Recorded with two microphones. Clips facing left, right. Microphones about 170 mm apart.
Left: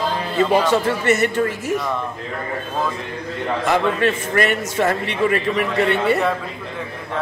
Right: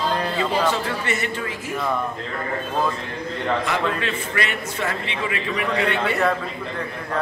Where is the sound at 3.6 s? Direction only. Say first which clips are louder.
Left 6 dB; 50° left (ahead or behind).